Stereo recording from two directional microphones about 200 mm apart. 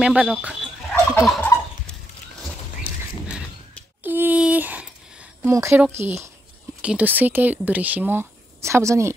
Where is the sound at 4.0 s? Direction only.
10° right (ahead or behind).